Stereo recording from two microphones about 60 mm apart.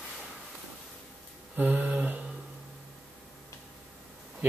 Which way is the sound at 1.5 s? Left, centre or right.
Right.